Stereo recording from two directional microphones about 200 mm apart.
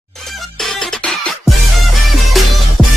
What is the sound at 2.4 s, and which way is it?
Music, centre (ahead or behind).